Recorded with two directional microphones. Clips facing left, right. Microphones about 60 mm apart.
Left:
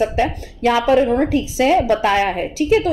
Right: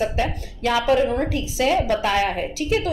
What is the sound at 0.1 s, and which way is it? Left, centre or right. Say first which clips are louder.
A woman's voice: left 5 dB; left.